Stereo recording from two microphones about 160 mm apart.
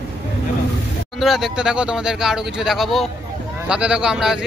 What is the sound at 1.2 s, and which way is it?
Speech, centre (ahead or behind).